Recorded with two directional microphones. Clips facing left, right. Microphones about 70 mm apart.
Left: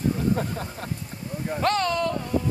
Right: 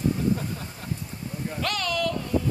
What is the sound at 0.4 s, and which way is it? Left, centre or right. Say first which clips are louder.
Speech: left 5 dB; left.